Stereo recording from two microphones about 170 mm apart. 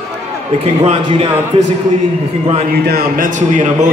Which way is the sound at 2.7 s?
65° right (ahead or behind).